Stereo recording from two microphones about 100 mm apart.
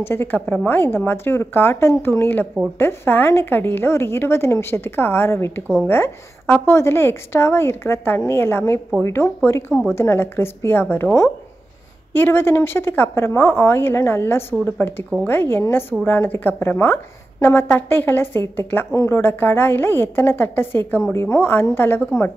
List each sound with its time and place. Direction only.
0.0 s a woman's voice: 20° left (ahead or behind)
12.1 s a woman's voice: 20° left (ahead or behind)